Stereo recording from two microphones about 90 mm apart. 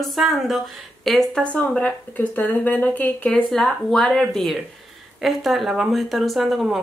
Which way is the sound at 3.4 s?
5° left (ahead or behind).